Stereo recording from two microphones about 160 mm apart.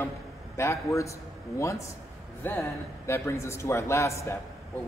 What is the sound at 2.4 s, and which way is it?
Speech, 10° left (ahead or behind).